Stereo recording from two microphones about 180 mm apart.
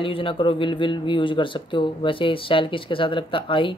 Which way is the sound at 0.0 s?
30° left (ahead or behind).